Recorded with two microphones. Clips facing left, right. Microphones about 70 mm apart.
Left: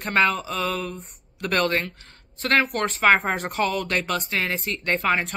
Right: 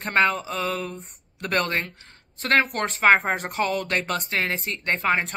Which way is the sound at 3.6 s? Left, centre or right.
Right.